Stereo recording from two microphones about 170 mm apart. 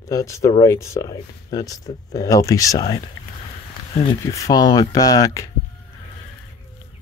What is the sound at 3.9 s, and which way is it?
Speech, 35° left (ahead or behind).